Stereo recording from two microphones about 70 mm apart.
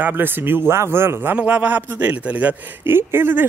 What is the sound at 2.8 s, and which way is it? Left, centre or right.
Speech, right.